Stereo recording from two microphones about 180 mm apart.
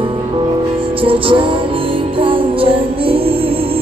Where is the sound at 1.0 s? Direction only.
30° right (ahead or behind).